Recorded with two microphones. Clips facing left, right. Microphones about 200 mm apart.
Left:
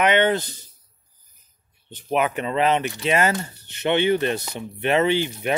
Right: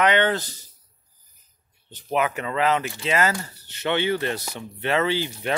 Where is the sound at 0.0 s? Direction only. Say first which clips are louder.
Left 2 dB; 20° left (ahead or behind).